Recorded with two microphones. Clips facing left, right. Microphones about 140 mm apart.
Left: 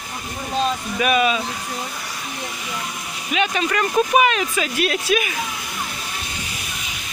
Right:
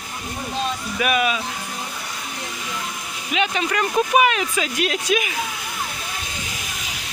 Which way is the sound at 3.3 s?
15° right (ahead or behind).